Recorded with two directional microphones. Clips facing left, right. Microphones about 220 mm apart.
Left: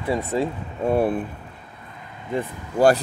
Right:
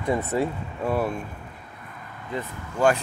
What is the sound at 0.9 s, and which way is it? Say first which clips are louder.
Speech: left 5 dB; 30° left (ahead or behind).